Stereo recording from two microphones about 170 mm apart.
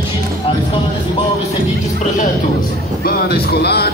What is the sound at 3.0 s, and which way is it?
Music, 65° left (ahead or behind).